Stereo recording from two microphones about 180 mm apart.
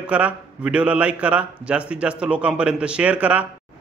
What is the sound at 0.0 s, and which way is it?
A man's voice, 5° right (ahead or behind).